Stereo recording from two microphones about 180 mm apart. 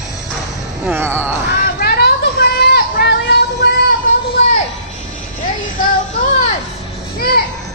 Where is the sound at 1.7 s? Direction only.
60° left (ahead or behind).